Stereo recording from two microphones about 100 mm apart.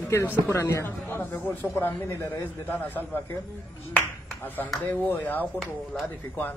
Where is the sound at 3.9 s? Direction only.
20° left (ahead or behind).